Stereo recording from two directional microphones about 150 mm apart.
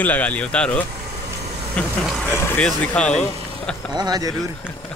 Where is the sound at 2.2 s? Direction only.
10° left (ahead or behind).